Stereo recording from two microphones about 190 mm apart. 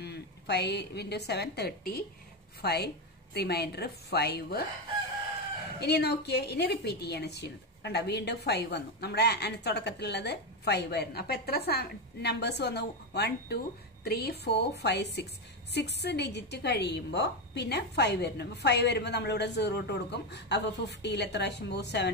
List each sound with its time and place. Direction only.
0.0 s a woman's voice: 60° left (ahead or behind)
5.8 s a woman's voice: 60° left (ahead or behind)